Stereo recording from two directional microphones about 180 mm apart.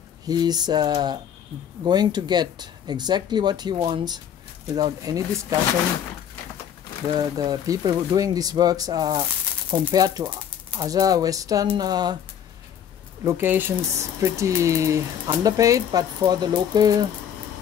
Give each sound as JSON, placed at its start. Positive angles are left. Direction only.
{"t": 0.3, "sound": "speech", "side_deg": -20}
{"t": 7.2, "sound": "speech", "side_deg": -20}
{"t": 13.2, "sound": "speech", "side_deg": -10}